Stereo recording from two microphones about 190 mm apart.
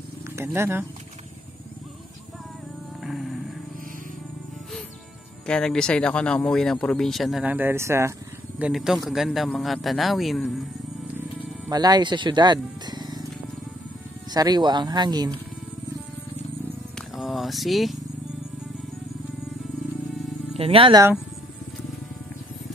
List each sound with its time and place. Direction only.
0.4 s speech: 15° right (ahead or behind)
3.0 s music: centre (ahead or behind)
5.5 s speech: 5° left (ahead or behind)
11.7 s speech: 20° right (ahead or behind)
14.3 s speech: 20° right (ahead or behind)
16.6 s purr: centre (ahead or behind)
20.5 s speech: 30° right (ahead or behind)